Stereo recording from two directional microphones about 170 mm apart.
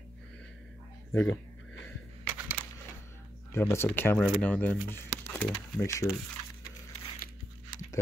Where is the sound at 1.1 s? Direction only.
10° left (ahead or behind).